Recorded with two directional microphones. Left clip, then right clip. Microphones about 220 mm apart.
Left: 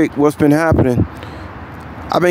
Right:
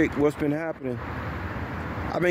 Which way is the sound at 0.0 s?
25° left (ahead or behind).